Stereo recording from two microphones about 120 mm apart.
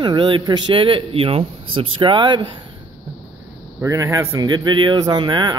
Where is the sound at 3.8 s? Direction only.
25° right (ahead or behind).